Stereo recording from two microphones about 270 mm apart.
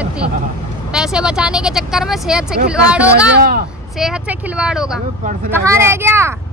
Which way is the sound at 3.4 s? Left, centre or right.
Right.